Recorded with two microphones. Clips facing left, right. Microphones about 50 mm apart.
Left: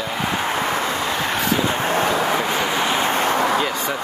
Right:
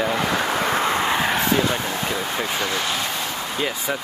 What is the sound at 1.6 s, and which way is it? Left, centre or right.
Speech, left.